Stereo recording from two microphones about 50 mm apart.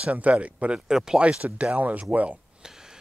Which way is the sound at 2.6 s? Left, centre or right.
Centre.